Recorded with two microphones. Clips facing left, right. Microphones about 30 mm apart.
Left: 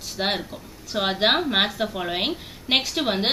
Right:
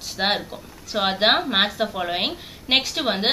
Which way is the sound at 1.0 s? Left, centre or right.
Centre.